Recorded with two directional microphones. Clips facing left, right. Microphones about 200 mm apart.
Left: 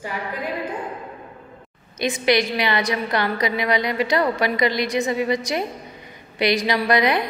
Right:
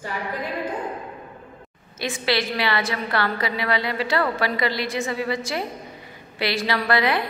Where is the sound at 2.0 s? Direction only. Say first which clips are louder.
Left 5 dB; 15° left (ahead or behind).